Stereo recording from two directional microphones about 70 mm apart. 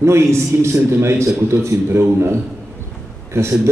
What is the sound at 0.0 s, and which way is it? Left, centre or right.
A man's voice, right.